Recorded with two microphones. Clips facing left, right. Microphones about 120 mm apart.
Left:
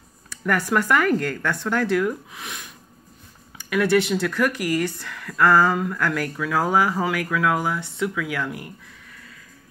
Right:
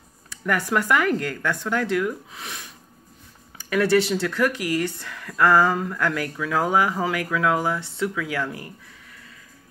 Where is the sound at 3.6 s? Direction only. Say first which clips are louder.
Even; 35° right (ahead or behind).